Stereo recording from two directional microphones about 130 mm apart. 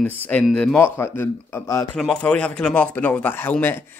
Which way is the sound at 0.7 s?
20° left (ahead or behind).